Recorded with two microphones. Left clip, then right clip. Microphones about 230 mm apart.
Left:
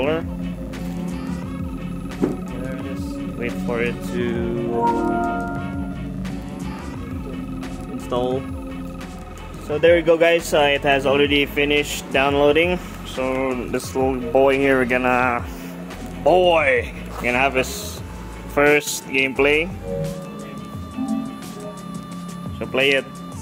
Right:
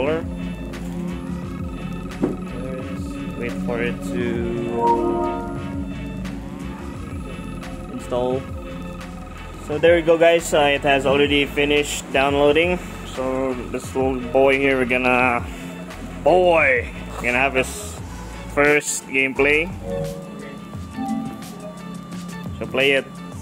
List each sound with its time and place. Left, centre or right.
3.3 s speech: centre
8.1 s speech: centre
9.7 s speech: centre
13.3 s speech: centre
13.9 s a man's voice: centre
18.7 s speech: centre
19.1 s speech: centre
21.0 s music: centre
22.6 s speech: centre